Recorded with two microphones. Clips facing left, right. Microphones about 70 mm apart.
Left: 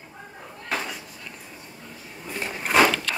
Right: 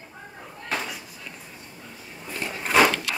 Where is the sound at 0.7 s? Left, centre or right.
Centre.